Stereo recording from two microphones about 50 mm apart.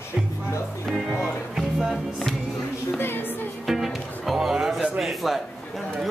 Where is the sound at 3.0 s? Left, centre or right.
Left.